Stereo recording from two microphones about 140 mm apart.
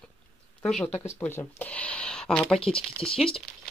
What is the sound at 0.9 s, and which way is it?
Speech, 15° left (ahead or behind).